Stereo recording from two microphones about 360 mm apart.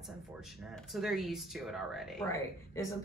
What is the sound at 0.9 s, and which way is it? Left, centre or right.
Speech, centre.